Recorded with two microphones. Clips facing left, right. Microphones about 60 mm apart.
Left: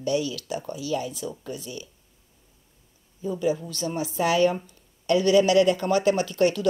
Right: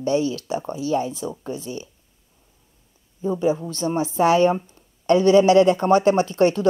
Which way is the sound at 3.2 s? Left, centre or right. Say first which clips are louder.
Right 4 dB; right.